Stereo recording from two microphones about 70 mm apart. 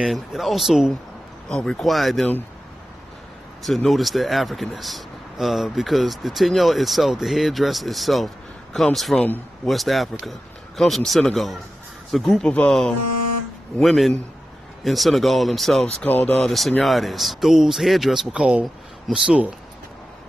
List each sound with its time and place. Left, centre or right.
0.0 s speech: centre
1.5 s speech: centre
3.6 s speech: centre
13.7 s speech: centre
16.1 s speech: left
16.3 s speech: centre
18.3 s speech: centre